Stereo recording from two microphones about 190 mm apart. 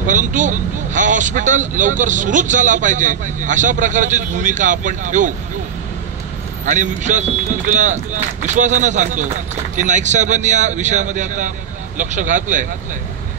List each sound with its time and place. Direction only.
0.0 s speech: 40° right (ahead or behind)
6.6 s speech: 40° right (ahead or behind)